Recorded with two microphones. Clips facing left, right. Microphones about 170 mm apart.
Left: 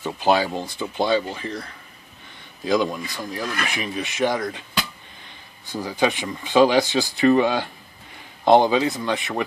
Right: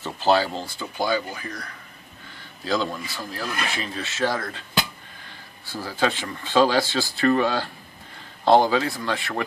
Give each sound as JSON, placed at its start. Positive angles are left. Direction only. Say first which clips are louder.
{"t": 0.0, "sound": "speech", "louder": "left 1 dB", "side_deg": 15}
{"t": 2.6, "sound": "speech", "louder": "left 4 dB", "side_deg": 15}